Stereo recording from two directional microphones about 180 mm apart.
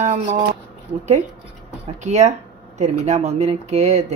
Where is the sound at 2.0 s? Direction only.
40° right (ahead or behind).